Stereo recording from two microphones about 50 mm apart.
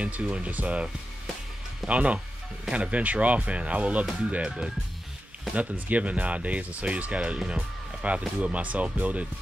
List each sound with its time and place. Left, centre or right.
0.0 s speech: right
1.9 s speech: right